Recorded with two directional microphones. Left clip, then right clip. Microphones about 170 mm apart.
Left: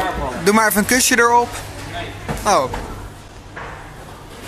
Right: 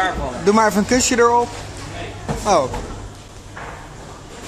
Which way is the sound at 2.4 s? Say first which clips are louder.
Even; 5° right (ahead or behind).